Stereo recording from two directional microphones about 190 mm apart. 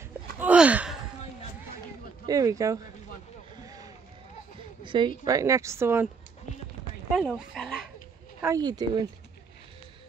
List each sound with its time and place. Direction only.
0.4 s a sound: 5° right (ahead or behind)
2.2 s a woman's voice: 15° right (ahead or behind)
3.6 s vehicle: 20° right (ahead or behind)
4.8 s a woman's voice: 25° right (ahead or behind)
7.2 s speech: centre (ahead or behind)
8.4 s speech: 15° right (ahead or behind)